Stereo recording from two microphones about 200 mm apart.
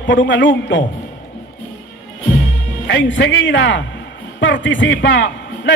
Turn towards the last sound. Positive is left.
turn(degrees=70)  # may be behind; listen again after turning